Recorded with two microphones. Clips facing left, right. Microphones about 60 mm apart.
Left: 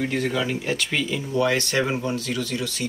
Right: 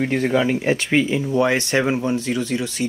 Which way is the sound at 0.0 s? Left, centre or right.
Right.